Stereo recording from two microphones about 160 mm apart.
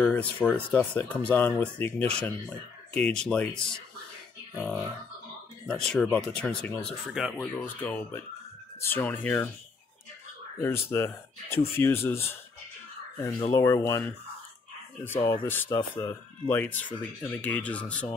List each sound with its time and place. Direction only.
0.0 s speech: 10° left (ahead or behind)
5.7 s speech: 5° left (ahead or behind)
10.6 s speech: 15° left (ahead or behind)
13.5 s speech: 15° left (ahead or behind)
15.0 s speech: 15° left (ahead or behind)